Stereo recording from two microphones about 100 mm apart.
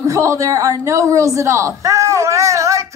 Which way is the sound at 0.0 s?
30° right (ahead or behind).